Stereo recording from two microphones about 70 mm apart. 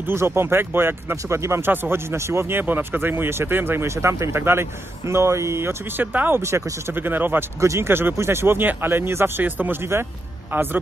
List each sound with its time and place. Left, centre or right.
0.0 s speech: right
7.6 s a man's voice: right